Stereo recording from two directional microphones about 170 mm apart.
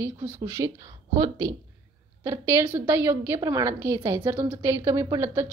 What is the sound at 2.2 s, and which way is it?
A woman's voice, 15° right (ahead or behind).